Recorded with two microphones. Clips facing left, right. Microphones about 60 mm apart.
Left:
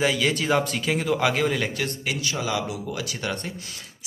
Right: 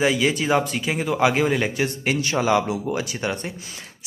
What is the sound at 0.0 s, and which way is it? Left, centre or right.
Speech, centre.